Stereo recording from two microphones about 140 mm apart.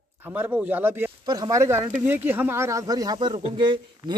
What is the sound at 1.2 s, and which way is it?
Speech, 30° right (ahead or behind).